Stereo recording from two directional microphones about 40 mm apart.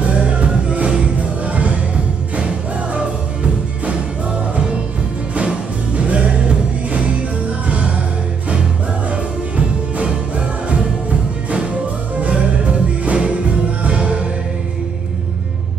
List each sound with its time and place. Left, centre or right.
0.4 s music: right
5.3 s music: right
7.6 s music: right
9.1 s music: right
13.0 s music: right